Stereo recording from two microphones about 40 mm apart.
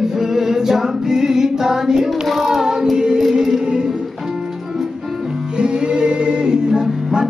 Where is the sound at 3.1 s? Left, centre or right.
Centre.